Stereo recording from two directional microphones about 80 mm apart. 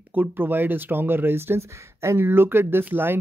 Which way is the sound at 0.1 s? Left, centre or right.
Right.